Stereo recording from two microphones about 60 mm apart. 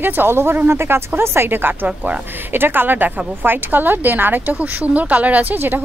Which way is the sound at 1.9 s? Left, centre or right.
Right.